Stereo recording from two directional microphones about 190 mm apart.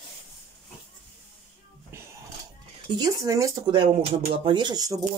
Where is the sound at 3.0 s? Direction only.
15° right (ahead or behind).